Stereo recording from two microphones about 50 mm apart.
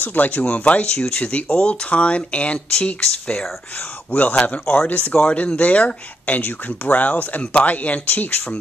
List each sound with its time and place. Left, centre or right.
0.0 s speech: left
3.7 s speech: left